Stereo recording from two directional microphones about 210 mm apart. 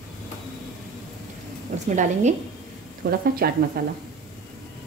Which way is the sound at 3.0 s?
50° right (ahead or behind).